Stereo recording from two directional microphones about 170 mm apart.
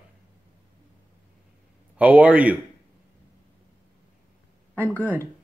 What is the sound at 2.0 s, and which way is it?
Speech, 10° right (ahead or behind).